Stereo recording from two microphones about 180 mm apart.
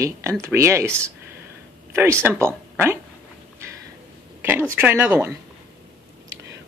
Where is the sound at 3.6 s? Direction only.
15° right (ahead or behind).